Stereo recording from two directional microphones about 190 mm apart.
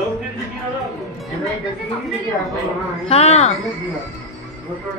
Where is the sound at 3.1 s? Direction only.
35° left (ahead or behind).